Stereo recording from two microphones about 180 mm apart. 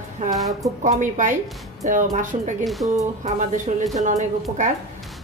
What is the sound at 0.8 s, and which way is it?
Speech, 45° right (ahead or behind).